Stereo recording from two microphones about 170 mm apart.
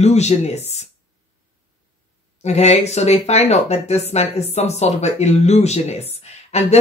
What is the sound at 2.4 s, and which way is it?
Speech, 40° left (ahead or behind).